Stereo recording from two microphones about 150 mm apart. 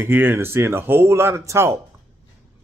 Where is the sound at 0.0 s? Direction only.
15° right (ahead or behind).